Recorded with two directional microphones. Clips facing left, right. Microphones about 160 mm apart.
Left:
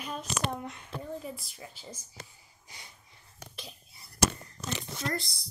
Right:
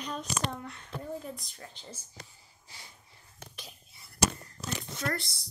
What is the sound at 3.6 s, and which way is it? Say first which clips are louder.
Whispering: left 3 dB; 35° left (ahead or behind).